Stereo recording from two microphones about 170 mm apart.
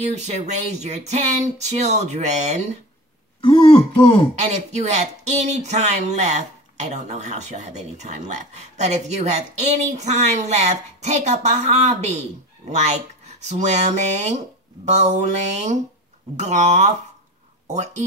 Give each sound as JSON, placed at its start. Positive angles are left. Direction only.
{"t": 0.0, "sound": "speech", "side_deg": -40}
{"t": 3.3, "sound": "speech", "side_deg": 30}
{"t": 4.4, "sound": "speech", "side_deg": -45}